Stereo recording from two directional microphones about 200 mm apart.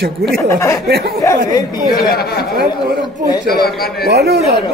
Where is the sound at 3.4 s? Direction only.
50° left (ahead or behind).